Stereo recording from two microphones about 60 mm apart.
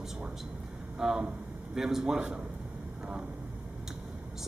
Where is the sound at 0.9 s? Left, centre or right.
Centre.